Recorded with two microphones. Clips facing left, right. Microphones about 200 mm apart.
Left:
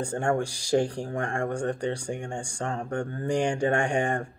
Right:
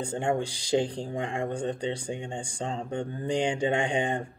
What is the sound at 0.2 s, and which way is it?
Speech, 20° right (ahead or behind).